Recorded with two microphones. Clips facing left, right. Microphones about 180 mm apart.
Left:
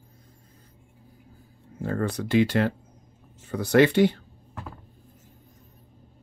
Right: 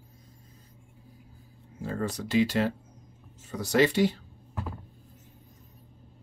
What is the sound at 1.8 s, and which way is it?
Speech, 60° left (ahead or behind).